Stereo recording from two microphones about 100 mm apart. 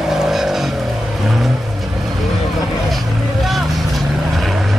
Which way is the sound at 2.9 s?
Centre (ahead or behind).